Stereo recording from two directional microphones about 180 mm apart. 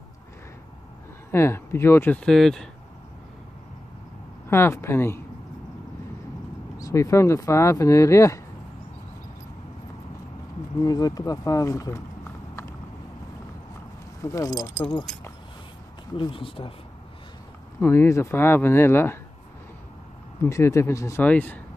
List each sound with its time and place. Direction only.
1.3 s speech: 15° left (ahead or behind)
4.5 s speech: 15° left (ahead or behind)
6.8 s speech: 15° left (ahead or behind)
10.8 s speech: 20° left (ahead or behind)
14.2 s speech: 20° left (ahead or behind)
16.2 s speech: 30° left (ahead or behind)
17.7 s speech: 15° left (ahead or behind)
20.4 s speech: 15° left (ahead or behind)